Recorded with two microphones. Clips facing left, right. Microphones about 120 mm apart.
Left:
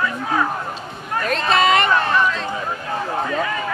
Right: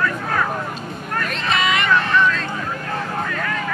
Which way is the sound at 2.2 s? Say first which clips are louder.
Right 1 dB; 15° left (ahead or behind).